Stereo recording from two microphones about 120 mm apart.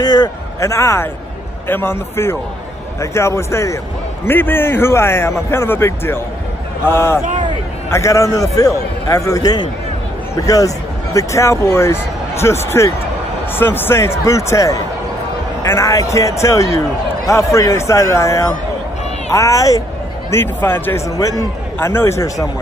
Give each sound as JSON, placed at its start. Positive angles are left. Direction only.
{"t": 0.0, "sound": "a man's voice", "side_deg": 35}